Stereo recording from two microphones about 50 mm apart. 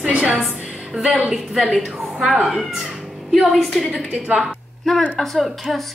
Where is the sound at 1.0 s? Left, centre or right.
Centre.